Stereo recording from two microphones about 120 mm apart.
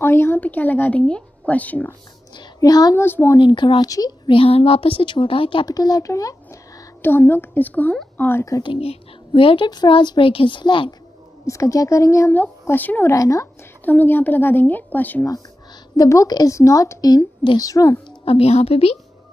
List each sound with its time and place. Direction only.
0.0 s speech: 20° left (ahead or behind)
2.3 s a child's voice: 35° left (ahead or behind)
3.0 s a woman's voice: 20° left (ahead or behind)
3.3 s speech: 40° left (ahead or behind)
4.3 s a woman's voice: 50° left (ahead or behind)
5.7 s speech: 35° left (ahead or behind)
8.6 s a woman's voice: 50° left (ahead or behind)
11.4 s a woman's voice: 25° left (ahead or behind)
13.1 s a woman's voice: 25° left (ahead or behind)
13.8 s speech: 15° left (ahead or behind)
16.0 s a woman's voice: 30° left (ahead or behind)
18.2 s a woman's voice: 55° left (ahead or behind)